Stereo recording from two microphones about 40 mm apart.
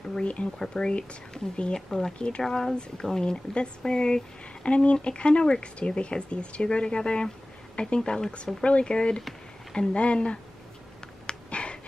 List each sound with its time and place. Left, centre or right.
0.1 s speech: left; by 2.1 s centre
2.1 s speech: left
4.6 s speech: left
11.2 s dog: left